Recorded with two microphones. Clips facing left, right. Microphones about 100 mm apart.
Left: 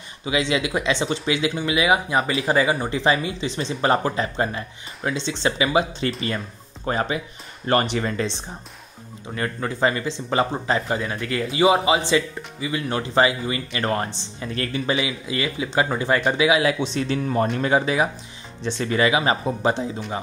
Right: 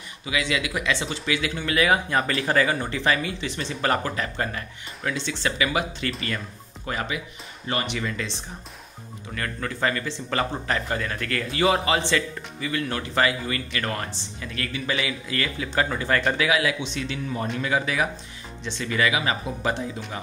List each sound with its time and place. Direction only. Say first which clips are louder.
0.2 s speech: left 4 dB; 25° left (ahead or behind)
9.3 s speech: left 4 dB; 25° left (ahead or behind)
15.0 s speech: left 3 dB; 20° left (ahead or behind)
16.6 s speech: left 5 dB; 35° left (ahead or behind)
17.6 s speech: left 2 dB; 30° left (ahead or behind)
18.6 s speech: left 4 dB; 40° left (ahead or behind)